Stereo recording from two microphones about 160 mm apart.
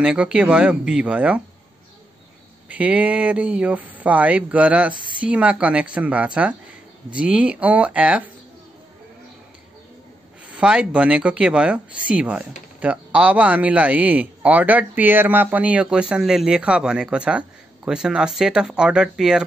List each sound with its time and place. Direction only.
0.0 s speech: 5° right (ahead or behind)
2.7 s speech: 10° right (ahead or behind)
4.9 s speech: 30° right (ahead or behind)
5.2 s speech: 5° right (ahead or behind)
10.5 s speech: 5° right (ahead or behind)